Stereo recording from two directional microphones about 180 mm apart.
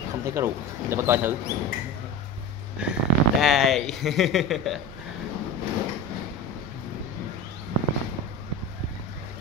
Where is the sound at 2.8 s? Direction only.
5° right (ahead or behind).